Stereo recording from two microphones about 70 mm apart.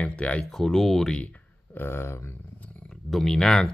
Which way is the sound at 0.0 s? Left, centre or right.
Centre.